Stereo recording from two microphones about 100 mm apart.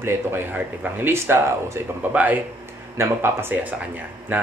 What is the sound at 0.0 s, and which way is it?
Speech, 20° right (ahead or behind).